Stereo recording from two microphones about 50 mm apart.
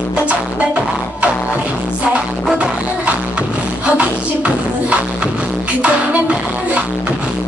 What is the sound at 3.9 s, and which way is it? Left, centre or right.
Music, right.